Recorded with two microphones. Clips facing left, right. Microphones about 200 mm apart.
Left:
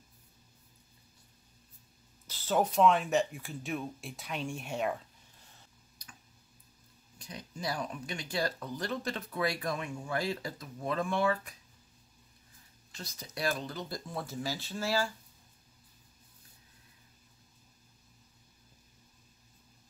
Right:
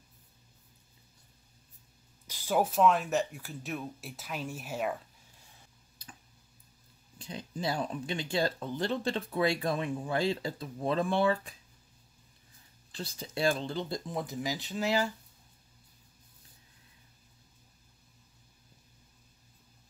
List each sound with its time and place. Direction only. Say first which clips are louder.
2.2 s speech: right 1 dB; 10° right (ahead or behind)
7.2 s speech: right 5 dB; 30° right (ahead or behind)
12.9 s speech: right 6 dB; 30° right (ahead or behind)